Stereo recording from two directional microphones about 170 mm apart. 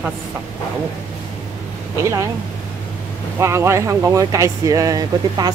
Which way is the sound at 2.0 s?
15° right (ahead or behind).